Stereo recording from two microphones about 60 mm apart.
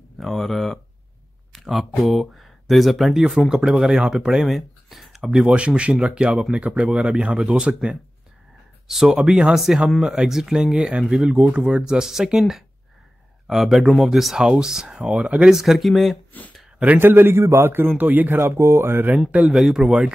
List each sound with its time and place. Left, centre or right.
0.2 s speech: centre
5.8 s speech: centre
8.8 s speech: centre
15.1 s speech: right
15.5 s speech: centre
17.0 s a man's voice: right
18.4 s speech: right
19.5 s speech: centre
19.8 s speech: centre